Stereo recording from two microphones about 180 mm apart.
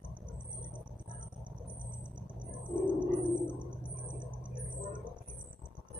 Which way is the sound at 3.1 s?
25° right (ahead or behind).